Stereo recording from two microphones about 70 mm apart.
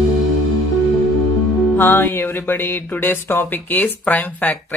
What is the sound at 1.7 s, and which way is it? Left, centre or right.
Music, left.